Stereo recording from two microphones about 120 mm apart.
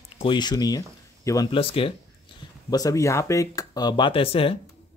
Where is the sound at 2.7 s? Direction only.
30° left (ahead or behind); by 4.6 s 50° left (ahead or behind).